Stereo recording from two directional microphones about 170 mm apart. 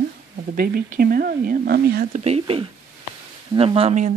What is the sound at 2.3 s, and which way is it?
Speech, 35° right (ahead or behind).